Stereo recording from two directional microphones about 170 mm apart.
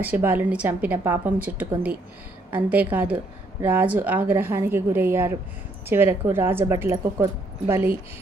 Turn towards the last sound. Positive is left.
turn(degrees=-15)  # may be behind; listen again after turning